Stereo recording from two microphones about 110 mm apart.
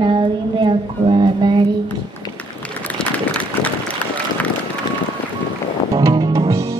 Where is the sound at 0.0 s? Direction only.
50° right (ahead or behind).